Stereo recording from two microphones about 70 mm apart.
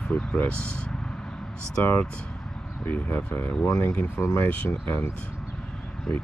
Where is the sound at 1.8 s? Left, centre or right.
Left.